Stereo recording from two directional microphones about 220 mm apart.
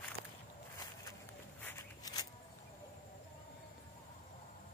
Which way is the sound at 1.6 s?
15° left (ahead or behind).